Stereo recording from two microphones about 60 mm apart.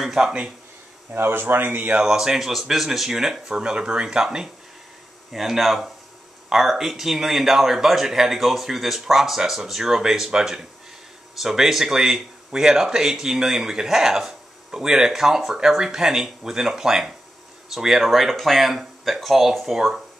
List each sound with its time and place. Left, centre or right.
0.0 s speech: centre
1.1 s speech: right
2.0 s speech: centre
5.3 s speech: centre